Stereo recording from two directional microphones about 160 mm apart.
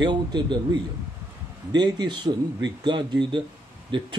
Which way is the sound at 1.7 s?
25° right (ahead or behind).